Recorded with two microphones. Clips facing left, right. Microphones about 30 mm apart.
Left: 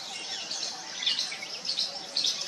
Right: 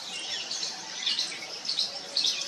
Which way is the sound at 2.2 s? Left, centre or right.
Centre.